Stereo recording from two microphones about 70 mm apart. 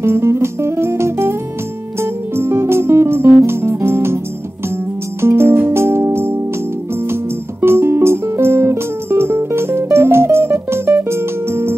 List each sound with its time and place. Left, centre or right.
0.0 s music: right
5.2 s music: right
7.6 s music: right